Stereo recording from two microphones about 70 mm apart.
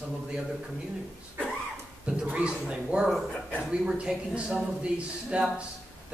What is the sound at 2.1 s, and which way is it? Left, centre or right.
Speech, centre.